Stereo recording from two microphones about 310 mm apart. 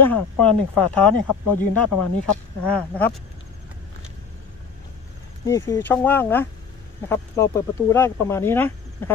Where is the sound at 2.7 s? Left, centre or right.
Centre.